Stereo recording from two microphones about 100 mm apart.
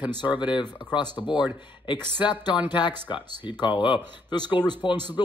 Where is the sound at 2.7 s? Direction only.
50° left (ahead or behind).